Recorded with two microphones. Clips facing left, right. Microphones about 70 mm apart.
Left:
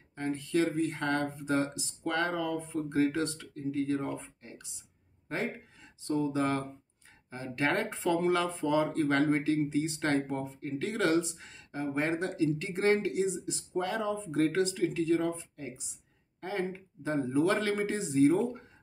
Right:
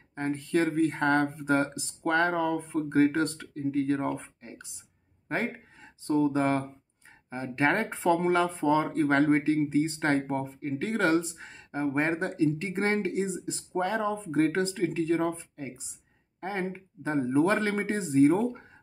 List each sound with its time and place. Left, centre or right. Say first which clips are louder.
0.1 s speech: right 3 dB; right
7.2 s speech: right 4 dB; right